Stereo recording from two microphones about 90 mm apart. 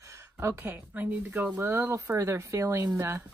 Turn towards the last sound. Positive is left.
turn(degrees=-30)  # may be behind; listen again after turning